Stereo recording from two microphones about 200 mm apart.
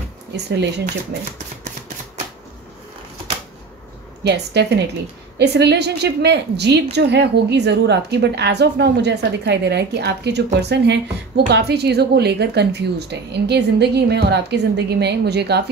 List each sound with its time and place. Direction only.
0.5 s a woman's voice: 60° right (ahead or behind)
4.3 s a woman's voice: 55° right (ahead or behind)